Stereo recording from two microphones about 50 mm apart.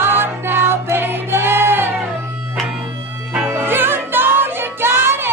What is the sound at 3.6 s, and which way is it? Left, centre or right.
Music, right.